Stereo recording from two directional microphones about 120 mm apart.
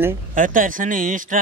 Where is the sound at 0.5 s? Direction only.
90° right.